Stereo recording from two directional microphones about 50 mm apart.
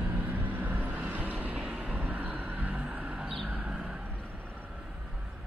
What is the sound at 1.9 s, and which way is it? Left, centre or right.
Vehicle, right.